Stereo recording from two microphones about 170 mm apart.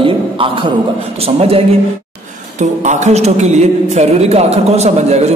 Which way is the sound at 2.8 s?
45° right (ahead or behind).